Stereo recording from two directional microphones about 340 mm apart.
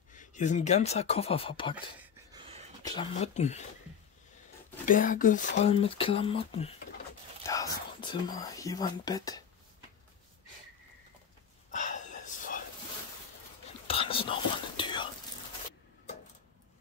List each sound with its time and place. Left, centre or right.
0.1 s speech: left
2.3 s a sound: centre
2.8 s speech: centre
4.8 s speech: left
11.7 s whispering: left
13.8 s whispering: centre